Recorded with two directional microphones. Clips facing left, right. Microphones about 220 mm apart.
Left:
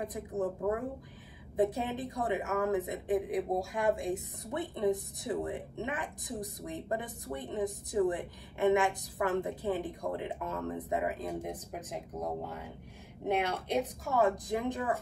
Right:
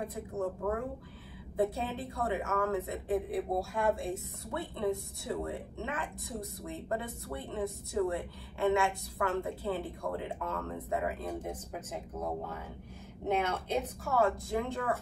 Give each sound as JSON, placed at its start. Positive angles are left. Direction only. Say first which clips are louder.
{"t": 0.0, "sound": "speech", "louder": "left 1 dB", "side_deg": 15}